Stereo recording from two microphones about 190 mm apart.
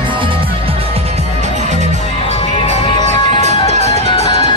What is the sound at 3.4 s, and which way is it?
Music, 35° right (ahead or behind).